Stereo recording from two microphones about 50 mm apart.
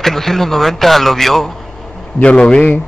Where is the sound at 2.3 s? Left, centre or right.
Centre.